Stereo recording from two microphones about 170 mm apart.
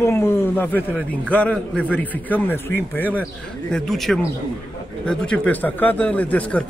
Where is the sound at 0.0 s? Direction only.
15° left (ahead or behind).